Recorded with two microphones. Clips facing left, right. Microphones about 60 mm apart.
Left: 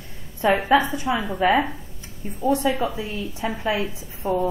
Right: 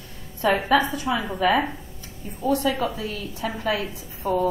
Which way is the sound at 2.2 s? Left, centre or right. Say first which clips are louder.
Left 2 dB; left.